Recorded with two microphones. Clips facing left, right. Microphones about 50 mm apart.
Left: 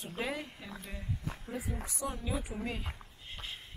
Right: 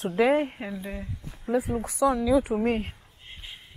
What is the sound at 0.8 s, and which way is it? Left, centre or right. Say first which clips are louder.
Speech: right 10 dB; right.